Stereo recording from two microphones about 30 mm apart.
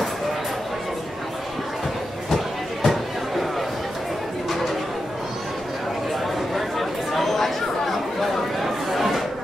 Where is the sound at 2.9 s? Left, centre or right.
Centre.